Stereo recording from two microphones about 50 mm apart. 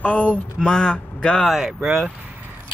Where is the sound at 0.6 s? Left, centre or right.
Centre.